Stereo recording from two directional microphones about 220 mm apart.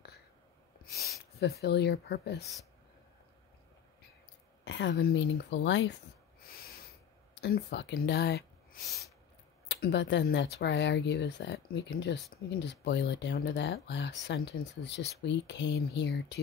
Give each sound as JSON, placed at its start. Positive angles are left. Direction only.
{"t": 1.4, "sound": "speech", "side_deg": 50}
{"t": 4.6, "sound": "speech", "side_deg": 55}
{"t": 7.4, "sound": "speech", "side_deg": 50}
{"t": 9.7, "sound": "speech", "side_deg": 50}